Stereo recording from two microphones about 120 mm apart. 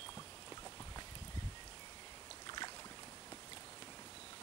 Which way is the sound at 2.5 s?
40° left (ahead or behind).